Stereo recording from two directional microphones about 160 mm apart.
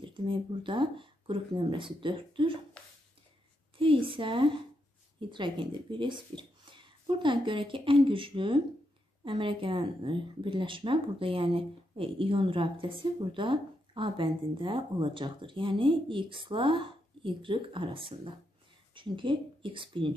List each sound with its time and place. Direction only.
0.0 s speech: 30° right (ahead or behind)
3.7 s speech: 35° right (ahead or behind)